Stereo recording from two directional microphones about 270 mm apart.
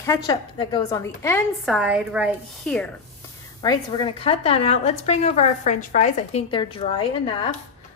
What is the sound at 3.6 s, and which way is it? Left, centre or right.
A woman's voice, centre.